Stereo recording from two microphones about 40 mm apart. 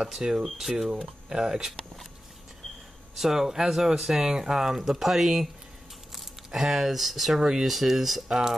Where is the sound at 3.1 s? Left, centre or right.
Centre.